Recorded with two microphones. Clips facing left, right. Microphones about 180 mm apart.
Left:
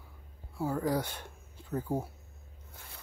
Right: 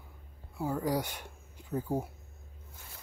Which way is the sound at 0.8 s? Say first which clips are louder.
Left 1 dB; 15° right (ahead or behind).